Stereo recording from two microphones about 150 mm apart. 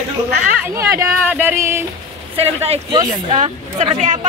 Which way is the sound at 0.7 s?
20° right (ahead or behind).